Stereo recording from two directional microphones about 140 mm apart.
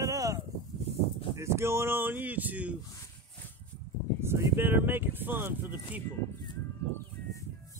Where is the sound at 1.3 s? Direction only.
20° right (ahead or behind).